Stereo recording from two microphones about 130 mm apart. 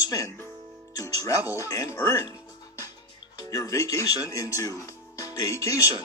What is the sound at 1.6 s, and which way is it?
Speech, 25° left (ahead or behind).